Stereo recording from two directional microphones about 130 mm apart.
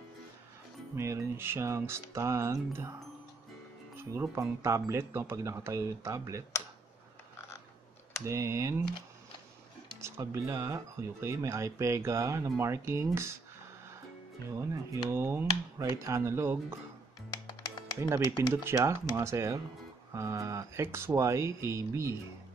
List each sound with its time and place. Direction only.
0.9 s speech: 20° right (ahead or behind)
8.3 s speech: 20° right (ahead or behind)
10.1 s speech: 20° right (ahead or behind)
14.6 s speech: 25° right (ahead or behind)
17.3 s music: 30° left (ahead or behind)
18.1 s speech: 20° right (ahead or behind)